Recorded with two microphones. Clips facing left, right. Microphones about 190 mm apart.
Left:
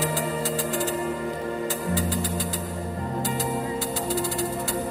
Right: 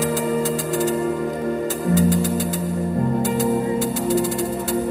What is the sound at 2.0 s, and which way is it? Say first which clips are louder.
Music: right 8 dB; 45° right (ahead or behind).